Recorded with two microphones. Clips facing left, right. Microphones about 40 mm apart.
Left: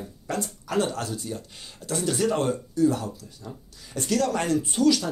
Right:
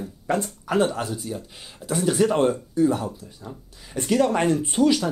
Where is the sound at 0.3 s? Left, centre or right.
Right.